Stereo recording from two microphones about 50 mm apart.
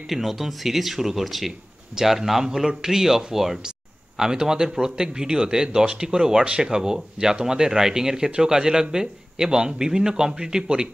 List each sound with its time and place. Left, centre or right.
0.0 s a man's voice: centre